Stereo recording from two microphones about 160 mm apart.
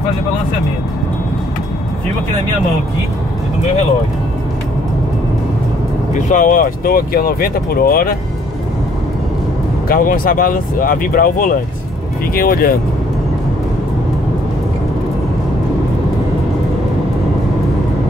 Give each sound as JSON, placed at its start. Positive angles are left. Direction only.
{"t": 6.1, "sound": "speech", "side_deg": 55}
{"t": 9.8, "sound": "speech", "side_deg": 60}